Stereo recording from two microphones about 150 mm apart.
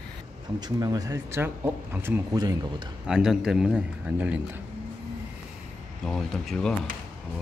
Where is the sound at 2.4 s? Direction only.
25° right (ahead or behind).